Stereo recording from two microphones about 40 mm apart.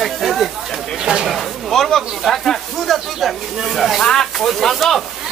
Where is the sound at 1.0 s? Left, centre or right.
Centre.